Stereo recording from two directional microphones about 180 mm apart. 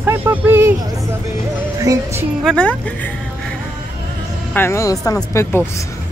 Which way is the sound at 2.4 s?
5° left (ahead or behind).